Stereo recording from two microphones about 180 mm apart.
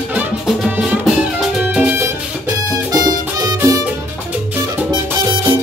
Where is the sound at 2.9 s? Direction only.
20° right (ahead or behind).